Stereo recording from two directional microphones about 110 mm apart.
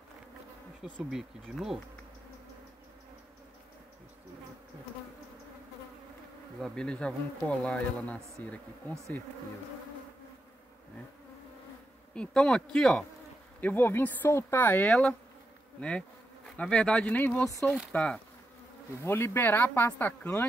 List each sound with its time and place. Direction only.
1.1 s speech: 5° right (ahead or behind)
6.6 s speech: 5° left (ahead or behind)
12.1 s speech: 10° left (ahead or behind)
13.6 s speech: 15° left (ahead or behind)
14.9 s speech: 5° left (ahead or behind)
16.4 s speech: 10° left (ahead or behind)
19.0 s speech: 25° left (ahead or behind)